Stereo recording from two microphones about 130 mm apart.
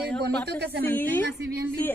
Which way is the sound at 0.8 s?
15° left (ahead or behind).